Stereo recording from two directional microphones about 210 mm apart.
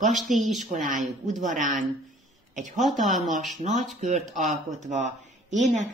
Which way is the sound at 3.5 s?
35° right (ahead or behind).